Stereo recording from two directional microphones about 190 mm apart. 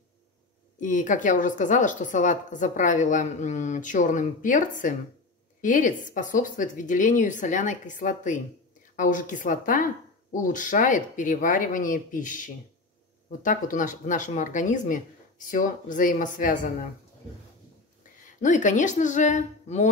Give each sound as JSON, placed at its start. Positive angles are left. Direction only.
{"t": 0.7, "sound": "a woman's voice", "side_deg": 40}
{"t": 18.4, "sound": "a woman's voice", "side_deg": 40}